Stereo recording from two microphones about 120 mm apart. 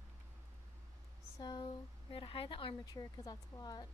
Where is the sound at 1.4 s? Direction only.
35° left (ahead or behind).